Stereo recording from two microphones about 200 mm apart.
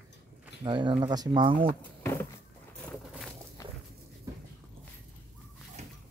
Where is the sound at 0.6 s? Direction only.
25° right (ahead or behind).